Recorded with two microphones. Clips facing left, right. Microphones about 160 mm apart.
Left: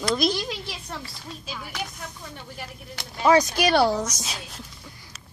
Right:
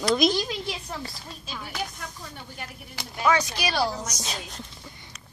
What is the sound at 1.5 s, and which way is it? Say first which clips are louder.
Speech: even; centre (ahead or behind).